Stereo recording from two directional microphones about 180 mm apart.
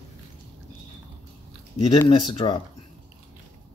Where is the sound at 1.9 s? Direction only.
25° left (ahead or behind).